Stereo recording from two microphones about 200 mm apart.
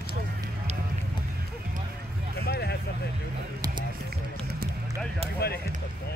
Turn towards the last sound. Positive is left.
turn(degrees=55)  # may be behind; listen again after turning